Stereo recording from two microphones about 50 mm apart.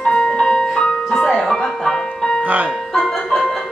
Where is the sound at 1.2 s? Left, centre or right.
Centre.